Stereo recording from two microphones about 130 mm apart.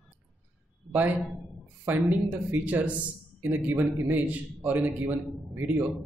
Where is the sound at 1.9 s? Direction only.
15° right (ahead or behind).